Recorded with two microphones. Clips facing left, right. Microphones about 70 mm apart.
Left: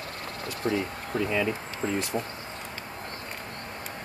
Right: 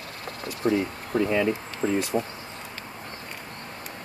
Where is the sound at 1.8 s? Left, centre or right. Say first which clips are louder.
Right 4 dB; centre.